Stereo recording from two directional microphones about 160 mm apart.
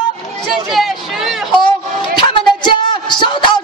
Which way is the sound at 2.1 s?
30° left (ahead or behind).